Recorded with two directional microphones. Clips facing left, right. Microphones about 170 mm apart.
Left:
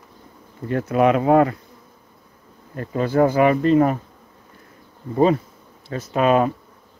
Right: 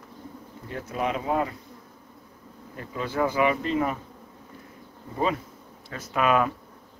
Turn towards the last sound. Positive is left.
turn(degrees=30)  # may be behind; listen again after turning